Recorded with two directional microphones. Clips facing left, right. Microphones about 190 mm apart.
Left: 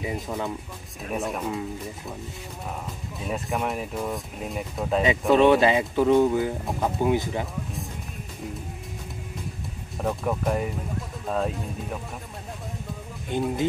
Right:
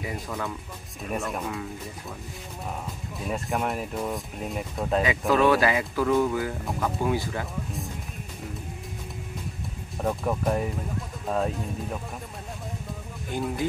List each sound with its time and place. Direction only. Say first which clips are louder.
0.0 s speech: left 3 dB; 20° left (ahead or behind)
1.1 s speech: left 2 dB; centre (ahead or behind)
3.3 s speech: even; centre (ahead or behind)
5.3 s speech: left 4 dB; 25° left (ahead or behind)
9.9 s speech: even; centre (ahead or behind)
13.3 s speech: left 3 dB; 20° left (ahead or behind)